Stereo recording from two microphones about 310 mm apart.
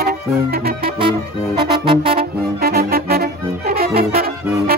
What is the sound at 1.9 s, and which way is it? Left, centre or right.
Music, centre.